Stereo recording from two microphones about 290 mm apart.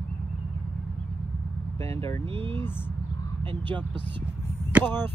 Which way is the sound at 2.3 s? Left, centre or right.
Centre.